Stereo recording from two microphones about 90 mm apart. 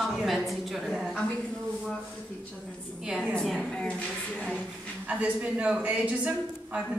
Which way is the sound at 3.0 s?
10° right (ahead or behind).